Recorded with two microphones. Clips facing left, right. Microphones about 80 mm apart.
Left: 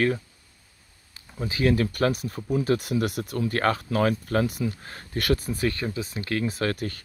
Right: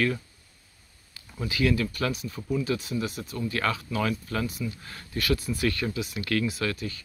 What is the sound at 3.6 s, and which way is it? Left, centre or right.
Speech, left.